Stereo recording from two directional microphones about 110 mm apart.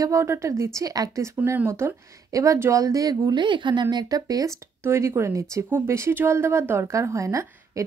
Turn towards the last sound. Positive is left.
turn(degrees=-30)  # may be behind; listen again after turning